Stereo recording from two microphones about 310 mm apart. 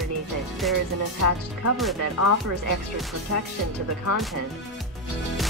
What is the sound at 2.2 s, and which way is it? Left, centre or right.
Speech, left.